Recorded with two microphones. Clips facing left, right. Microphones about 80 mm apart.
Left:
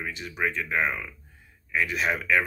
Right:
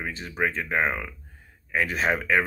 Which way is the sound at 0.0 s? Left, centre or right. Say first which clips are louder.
Right 2 dB; right.